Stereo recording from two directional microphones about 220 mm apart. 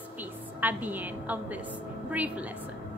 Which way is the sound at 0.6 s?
10° right (ahead or behind).